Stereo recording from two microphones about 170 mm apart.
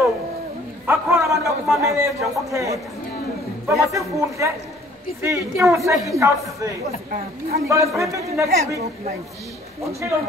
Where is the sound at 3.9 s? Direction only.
15° right (ahead or behind).